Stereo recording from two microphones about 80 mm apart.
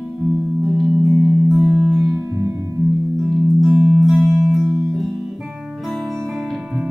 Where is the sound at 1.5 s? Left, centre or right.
Centre.